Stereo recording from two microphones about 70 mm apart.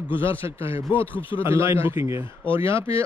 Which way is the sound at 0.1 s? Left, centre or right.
Right.